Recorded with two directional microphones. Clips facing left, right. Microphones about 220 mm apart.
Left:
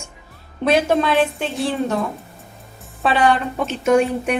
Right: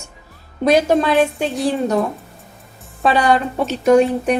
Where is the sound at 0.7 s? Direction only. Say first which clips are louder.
Right 2 dB; 35° right (ahead or behind).